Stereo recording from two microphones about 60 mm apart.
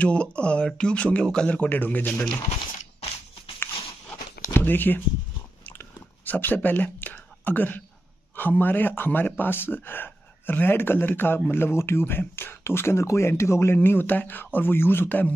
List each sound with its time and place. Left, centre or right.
0.0 s a man's voice: centre
1.6 s a man's voice: left
4.6 s speech: left
5.6 s biting: left
6.2 s a man's voice: left
13.8 s a man's voice: left